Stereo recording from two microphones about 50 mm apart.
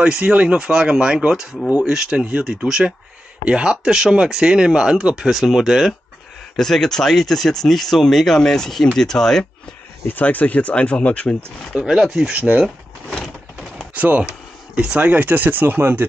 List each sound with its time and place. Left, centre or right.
0.0 s speech: right
6.5 s speech: centre
10.0 s speech: left
11.7 s speech: centre
12.5 s speech: right
13.9 s speech: right
14.8 s speech: centre
15.0 s speech: right